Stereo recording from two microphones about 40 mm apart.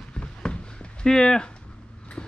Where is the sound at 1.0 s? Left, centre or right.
Centre.